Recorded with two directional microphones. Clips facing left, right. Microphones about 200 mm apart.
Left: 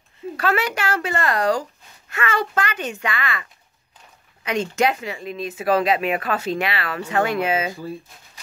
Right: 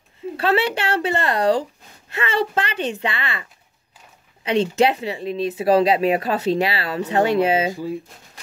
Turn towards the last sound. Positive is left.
turn(degrees=-15)  # may be behind; listen again after turning